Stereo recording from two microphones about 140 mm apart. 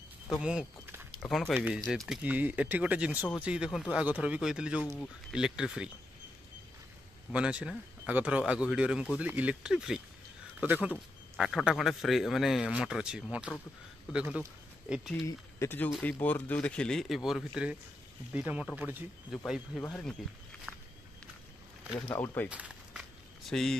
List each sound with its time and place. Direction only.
0.3 s speech: 5° right (ahead or behind)
1.5 s speech: 15° right (ahead or behind)
1.9 s speech: 5° right (ahead or behind)
7.3 s speech: 10° right (ahead or behind)
15.2 s speech: 15° left (ahead or behind); by 19.0 s 15° right (ahead or behind)
19.3 s speech: centre (ahead or behind)
20.7 s walk: 5° right (ahead or behind)
22.0 s speech: 15° left (ahead or behind)
22.5 s a sound: 10° right (ahead or behind)
23.5 s speech: 5° left (ahead or behind)